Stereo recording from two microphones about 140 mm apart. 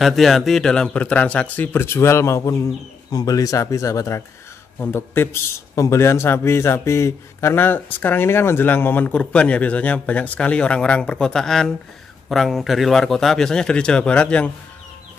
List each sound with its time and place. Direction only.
0.0 s a man's voice: centre (ahead or behind)